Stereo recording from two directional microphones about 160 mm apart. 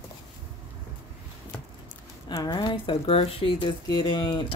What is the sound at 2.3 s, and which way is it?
Speech, 25° left (ahead or behind).